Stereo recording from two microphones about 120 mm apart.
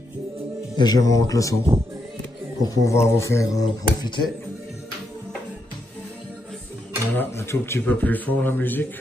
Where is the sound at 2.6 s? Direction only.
25° left (ahead or behind).